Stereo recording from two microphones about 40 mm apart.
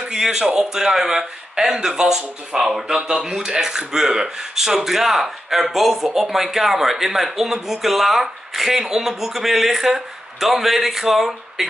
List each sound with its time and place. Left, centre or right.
0.0 s a man's voice: centre